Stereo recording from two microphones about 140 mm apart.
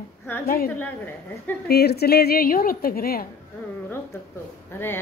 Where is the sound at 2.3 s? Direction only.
90° left.